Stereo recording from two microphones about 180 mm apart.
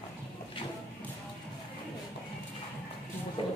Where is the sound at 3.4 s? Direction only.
30° left (ahead or behind).